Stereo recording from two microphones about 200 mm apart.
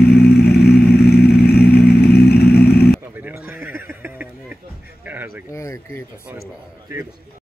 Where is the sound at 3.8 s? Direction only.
10° right (ahead or behind).